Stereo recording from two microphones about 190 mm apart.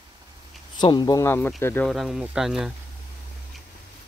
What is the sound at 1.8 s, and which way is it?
Speech, centre (ahead or behind).